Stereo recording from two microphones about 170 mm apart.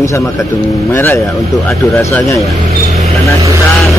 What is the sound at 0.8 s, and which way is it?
Speech, 15° left (ahead or behind).